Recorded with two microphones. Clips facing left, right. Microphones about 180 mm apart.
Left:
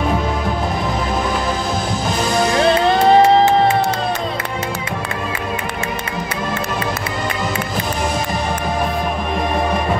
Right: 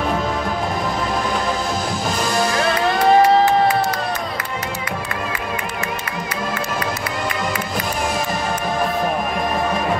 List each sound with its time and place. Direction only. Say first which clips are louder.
2.5 s music: left 5 dB; 25° left (ahead or behind)